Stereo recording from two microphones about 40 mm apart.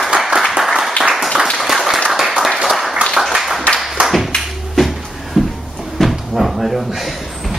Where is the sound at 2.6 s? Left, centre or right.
Centre.